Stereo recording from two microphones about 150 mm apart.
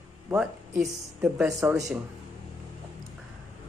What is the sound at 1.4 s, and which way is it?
Speech, 20° right (ahead or behind).